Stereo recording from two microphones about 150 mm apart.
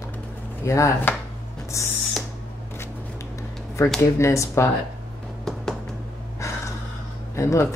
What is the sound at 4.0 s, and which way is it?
Speech, 20° left (ahead or behind).